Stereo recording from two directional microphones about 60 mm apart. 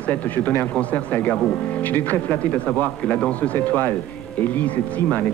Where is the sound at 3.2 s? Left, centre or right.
Left.